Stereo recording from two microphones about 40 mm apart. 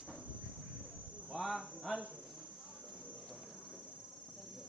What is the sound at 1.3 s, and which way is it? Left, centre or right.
Cricket, centre.